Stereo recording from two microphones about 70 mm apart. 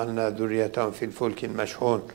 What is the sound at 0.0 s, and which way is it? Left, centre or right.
A man's voice, centre.